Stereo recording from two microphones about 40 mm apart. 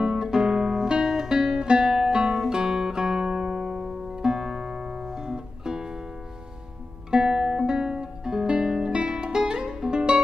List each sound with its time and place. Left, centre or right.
0.2 s guitar: centre
1.7 s music: centre
4.2 s music: centre
7.1 s music: centre